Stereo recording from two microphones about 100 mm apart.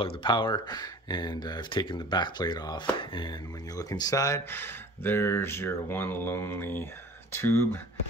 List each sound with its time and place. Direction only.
0.0 s speech: 55° left (ahead or behind); by 4.4 s 35° left (ahead or behind)
4.5 s speech: 20° left (ahead or behind)